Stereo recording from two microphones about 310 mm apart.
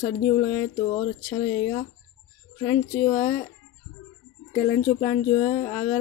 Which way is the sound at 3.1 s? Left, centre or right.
Left.